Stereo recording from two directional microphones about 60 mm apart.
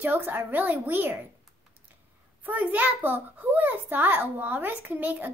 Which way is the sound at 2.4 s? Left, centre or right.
Right.